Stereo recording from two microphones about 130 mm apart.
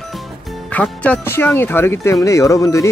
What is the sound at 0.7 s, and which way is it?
Speech, 10° left (ahead or behind).